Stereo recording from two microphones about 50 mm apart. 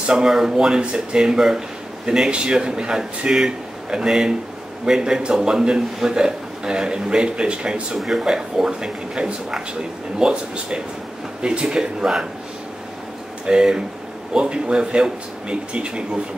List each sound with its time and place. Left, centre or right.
0.0 s speech: centre
8.0 s speech: centre
13.5 s a man's voice: centre